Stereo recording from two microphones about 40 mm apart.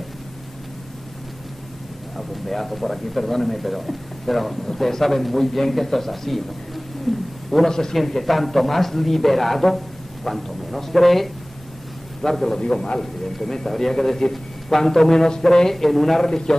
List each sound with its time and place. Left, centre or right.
2.1 s a man's voice: centre
7.5 s a man's voice: centre
12.6 s a man's voice: left
13.0 s a man's voice: centre